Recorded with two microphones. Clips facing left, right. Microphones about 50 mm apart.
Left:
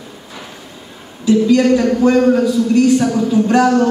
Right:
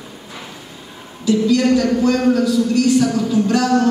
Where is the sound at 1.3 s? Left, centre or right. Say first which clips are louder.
Left 3 dB; left.